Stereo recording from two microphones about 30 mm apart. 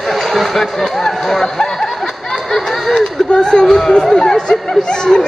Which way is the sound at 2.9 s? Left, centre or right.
Centre.